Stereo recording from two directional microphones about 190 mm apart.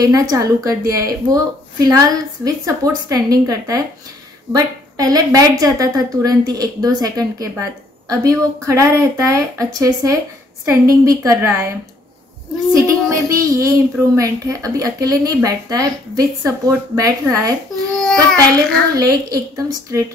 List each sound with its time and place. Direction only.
0.0 s a woman's voice: 20° right (ahead or behind)
12.7 s a woman's voice: 15° right (ahead or behind)
17.9 s child singing: 5° left (ahead or behind)
18.9 s a woman's voice: 20° right (ahead or behind)